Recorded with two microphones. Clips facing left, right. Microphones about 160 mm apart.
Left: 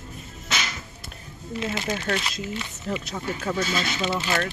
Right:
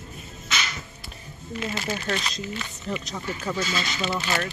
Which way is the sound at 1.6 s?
20° left (ahead or behind).